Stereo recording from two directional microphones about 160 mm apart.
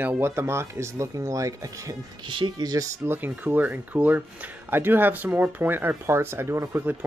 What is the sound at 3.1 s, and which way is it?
Speech, 10° right (ahead or behind).